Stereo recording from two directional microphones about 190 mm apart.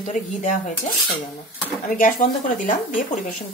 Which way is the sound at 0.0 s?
40° left (ahead or behind).